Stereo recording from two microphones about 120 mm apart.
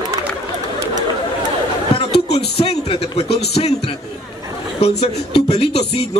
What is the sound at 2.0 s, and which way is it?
A man's voice, 60° left (ahead or behind).